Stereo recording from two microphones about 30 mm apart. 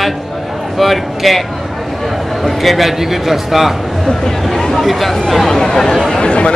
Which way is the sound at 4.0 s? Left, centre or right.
Centre.